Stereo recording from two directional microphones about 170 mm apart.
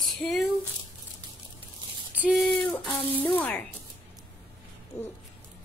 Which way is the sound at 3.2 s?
5° left (ahead or behind).